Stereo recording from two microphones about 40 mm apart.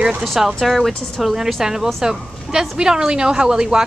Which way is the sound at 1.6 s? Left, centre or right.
Centre.